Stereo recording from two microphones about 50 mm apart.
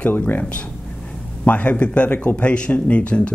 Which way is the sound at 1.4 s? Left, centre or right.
Left.